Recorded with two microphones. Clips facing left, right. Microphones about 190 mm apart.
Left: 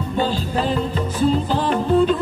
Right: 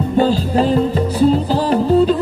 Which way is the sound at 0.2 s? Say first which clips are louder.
Right 7 dB; 40° right (ahead or behind).